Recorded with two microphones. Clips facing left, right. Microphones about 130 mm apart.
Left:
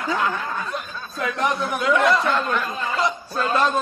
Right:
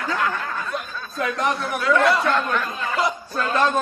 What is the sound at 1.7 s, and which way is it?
Mantra, 20° left (ahead or behind).